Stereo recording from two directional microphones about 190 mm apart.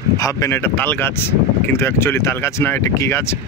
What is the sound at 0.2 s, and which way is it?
Speech, 15° left (ahead or behind).